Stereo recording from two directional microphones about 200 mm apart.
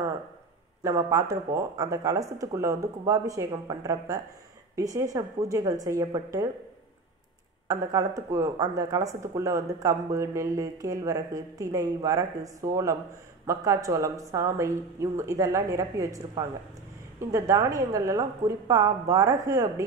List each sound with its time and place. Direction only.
0.8 s speech: 15° right (ahead or behind)
7.6 s speech: 15° right (ahead or behind)